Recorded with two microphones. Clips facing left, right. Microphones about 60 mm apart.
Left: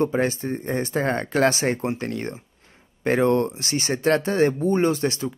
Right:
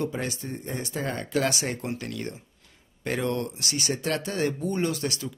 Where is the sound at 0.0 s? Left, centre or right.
Left.